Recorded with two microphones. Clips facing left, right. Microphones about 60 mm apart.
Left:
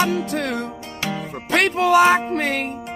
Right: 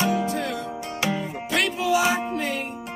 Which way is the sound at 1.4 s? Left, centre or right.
Left.